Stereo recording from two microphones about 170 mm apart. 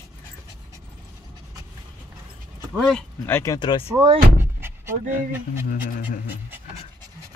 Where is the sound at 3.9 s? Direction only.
25° right (ahead or behind).